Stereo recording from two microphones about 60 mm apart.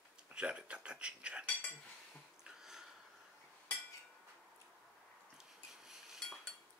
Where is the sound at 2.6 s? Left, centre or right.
Centre.